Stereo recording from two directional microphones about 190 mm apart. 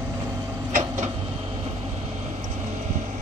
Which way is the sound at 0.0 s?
15° right (ahead or behind).